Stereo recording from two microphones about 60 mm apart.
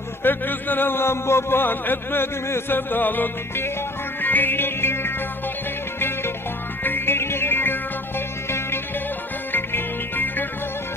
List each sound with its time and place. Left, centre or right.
0.2 s speech: left
4.2 s music: left